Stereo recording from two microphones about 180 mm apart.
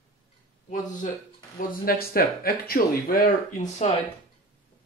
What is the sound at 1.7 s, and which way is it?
Speech, 55° left (ahead or behind).